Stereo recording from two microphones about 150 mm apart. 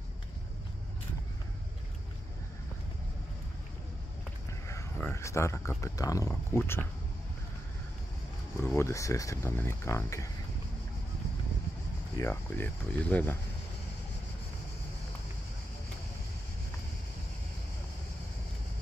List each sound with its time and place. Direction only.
4.6 s speech: 15° left (ahead or behind)
8.5 s speech: 15° left (ahead or behind)
12.2 s speech: 15° left (ahead or behind)